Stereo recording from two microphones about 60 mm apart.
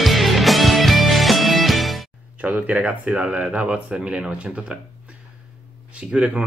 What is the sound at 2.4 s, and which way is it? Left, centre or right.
Speech, right.